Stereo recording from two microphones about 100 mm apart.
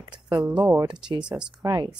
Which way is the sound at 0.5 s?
15° right (ahead or behind).